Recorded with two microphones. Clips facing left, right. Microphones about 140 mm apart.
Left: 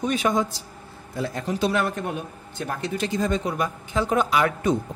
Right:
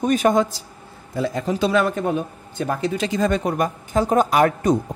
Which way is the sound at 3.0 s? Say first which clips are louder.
Right 2 dB; 90° right.